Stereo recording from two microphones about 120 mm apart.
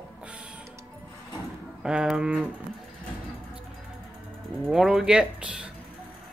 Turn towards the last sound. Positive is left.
turn(degrees=-5)  # may be behind; listen again after turning